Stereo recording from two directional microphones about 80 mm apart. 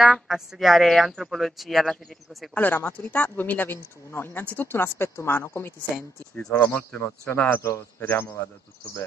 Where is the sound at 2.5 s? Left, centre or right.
Left.